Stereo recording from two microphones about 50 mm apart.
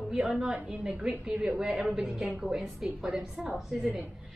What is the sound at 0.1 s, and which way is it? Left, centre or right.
A woman's voice, centre.